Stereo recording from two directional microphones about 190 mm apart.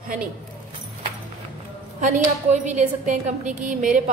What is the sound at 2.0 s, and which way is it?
Speech, 40° right (ahead or behind).